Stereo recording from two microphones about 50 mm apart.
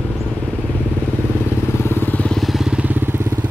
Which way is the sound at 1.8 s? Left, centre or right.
Left.